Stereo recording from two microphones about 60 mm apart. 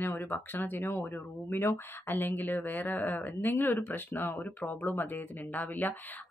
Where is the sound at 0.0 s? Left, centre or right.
Left.